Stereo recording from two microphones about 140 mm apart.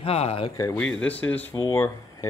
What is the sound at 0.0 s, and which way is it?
Speech, 45° left (ahead or behind).